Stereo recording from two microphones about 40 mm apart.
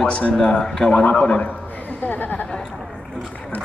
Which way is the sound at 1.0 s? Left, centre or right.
Left.